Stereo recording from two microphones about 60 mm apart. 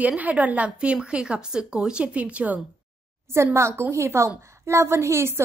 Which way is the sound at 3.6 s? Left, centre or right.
Right.